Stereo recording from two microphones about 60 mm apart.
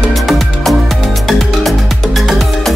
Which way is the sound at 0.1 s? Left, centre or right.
Centre.